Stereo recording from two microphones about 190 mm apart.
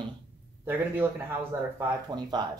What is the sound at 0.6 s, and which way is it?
Speech, 10° right (ahead or behind).